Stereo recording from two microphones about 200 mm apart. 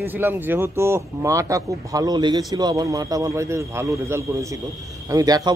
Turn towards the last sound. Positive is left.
turn(degrees=-20)  # may be behind; listen again after turning